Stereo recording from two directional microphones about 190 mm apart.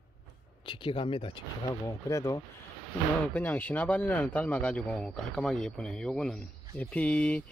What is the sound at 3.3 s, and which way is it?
Speech, 10° left (ahead or behind).